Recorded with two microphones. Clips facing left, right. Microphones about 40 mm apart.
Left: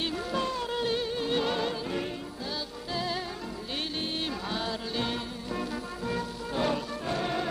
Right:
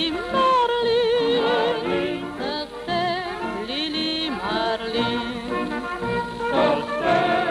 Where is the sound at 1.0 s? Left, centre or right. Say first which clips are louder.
Right 12 dB; right.